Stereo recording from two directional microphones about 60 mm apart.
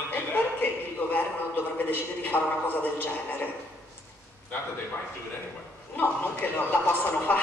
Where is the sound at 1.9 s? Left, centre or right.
Left.